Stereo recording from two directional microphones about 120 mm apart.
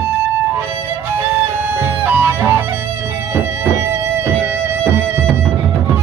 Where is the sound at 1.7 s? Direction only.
20° right (ahead or behind).